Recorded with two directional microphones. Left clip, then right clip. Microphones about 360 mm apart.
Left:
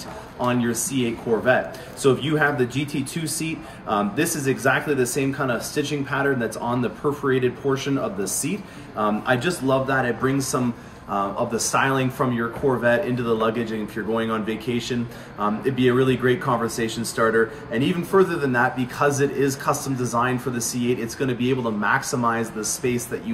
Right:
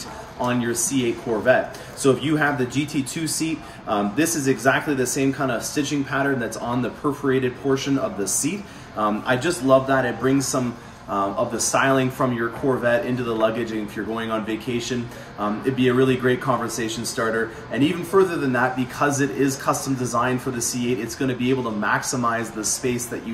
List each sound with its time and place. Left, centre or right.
0.4 s speech: centre
8.9 s speech: centre
11.7 s speech: centre